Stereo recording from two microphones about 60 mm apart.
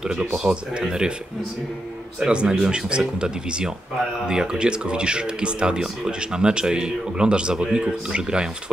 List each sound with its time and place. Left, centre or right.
0.0 s speech: centre
2.1 s speech: centre